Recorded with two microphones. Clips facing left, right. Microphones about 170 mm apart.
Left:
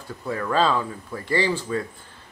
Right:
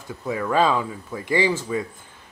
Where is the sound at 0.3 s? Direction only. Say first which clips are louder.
Right 2 dB; 10° right (ahead or behind).